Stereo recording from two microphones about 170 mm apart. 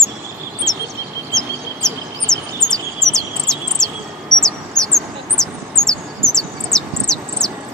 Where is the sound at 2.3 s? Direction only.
5° left (ahead or behind).